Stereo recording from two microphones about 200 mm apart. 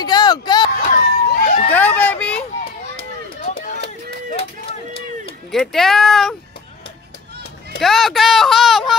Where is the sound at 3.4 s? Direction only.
40° left (ahead or behind).